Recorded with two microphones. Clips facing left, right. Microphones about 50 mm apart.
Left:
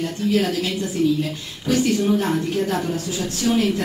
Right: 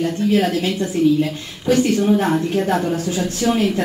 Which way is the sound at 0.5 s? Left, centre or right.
Right.